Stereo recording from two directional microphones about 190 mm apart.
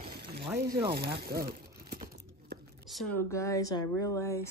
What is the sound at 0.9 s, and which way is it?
Speech, 55° right (ahead or behind).